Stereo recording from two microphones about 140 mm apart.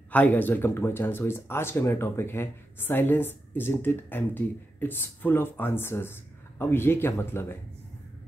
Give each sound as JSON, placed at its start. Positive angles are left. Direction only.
{"t": 0.1, "sound": "speech", "side_deg": 10}